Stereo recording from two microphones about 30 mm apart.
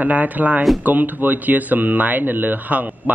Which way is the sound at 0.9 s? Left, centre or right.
Right.